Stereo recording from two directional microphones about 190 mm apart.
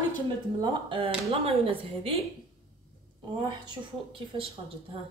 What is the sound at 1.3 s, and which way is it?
Speech, 30° right (ahead or behind).